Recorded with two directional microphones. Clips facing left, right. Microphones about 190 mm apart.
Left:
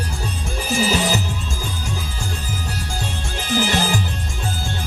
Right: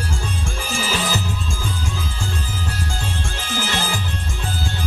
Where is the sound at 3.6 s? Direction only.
15° left (ahead or behind).